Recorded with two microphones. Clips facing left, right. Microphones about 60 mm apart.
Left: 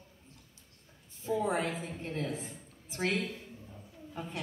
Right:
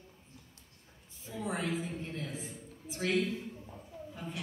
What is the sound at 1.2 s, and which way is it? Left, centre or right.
A woman's voice, left.